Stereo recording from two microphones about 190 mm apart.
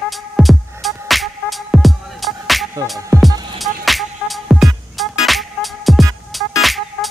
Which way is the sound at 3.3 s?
20° right (ahead or behind).